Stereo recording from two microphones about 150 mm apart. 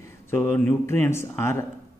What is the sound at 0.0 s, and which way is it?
Speech, 15° left (ahead or behind).